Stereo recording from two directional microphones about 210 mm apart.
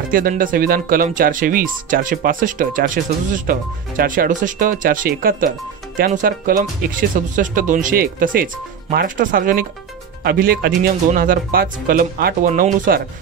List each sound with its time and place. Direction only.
0.1 s speech: 40° right (ahead or behind)